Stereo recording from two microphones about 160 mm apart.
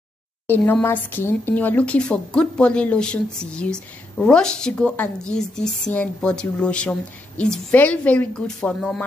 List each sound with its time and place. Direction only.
0.5 s speech: 15° left (ahead or behind)